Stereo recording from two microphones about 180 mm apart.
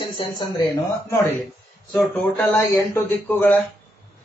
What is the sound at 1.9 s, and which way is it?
Speech, 10° left (ahead or behind).